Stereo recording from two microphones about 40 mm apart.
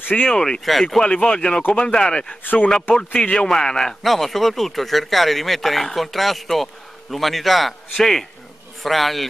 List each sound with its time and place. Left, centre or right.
0.1 s speech: centre
0.7 s speech: centre
1.0 s speech: left
2.4 s speech: left
2.7 s speech: left
3.4 s a man's voice: centre
4.0 s speech: centre